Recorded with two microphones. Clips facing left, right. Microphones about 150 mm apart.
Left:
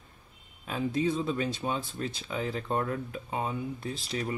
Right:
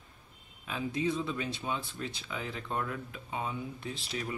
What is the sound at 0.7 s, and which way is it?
Speech, 40° left (ahead or behind).